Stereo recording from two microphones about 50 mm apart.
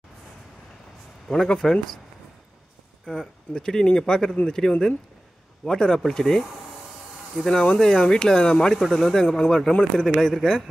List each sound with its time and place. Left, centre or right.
1.2 s speech: centre
3.1 s speech: centre